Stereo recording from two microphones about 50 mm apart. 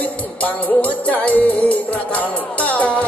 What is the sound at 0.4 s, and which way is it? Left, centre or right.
Music, left.